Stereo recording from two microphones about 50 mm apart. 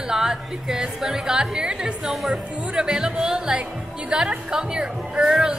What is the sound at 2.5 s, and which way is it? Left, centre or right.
A woman's voice, centre.